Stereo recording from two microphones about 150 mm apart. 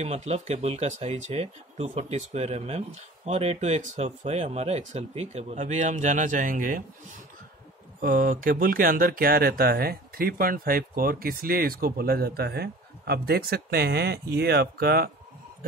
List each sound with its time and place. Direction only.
0.0 s speech: 45° right (ahead or behind); by 6.8 s 65° right (ahead or behind)
8.0 s speech: 70° right (ahead or behind); by 15.0 s 90° right